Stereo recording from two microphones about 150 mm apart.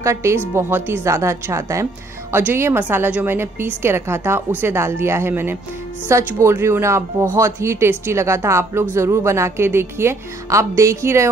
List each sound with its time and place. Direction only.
0.0 s a woman's voice: 20° right (ahead or behind)